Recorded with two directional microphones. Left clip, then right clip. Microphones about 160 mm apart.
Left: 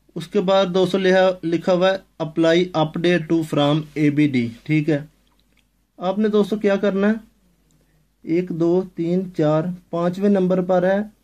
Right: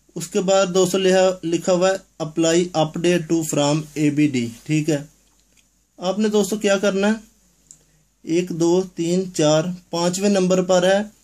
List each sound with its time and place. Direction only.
0.1 s speech: 25° left (ahead or behind)
6.1 s speech: 20° left (ahead or behind)
8.3 s speech: 25° left (ahead or behind)